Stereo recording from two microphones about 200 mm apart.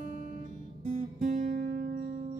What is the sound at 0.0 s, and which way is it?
Music, 40° right (ahead or behind).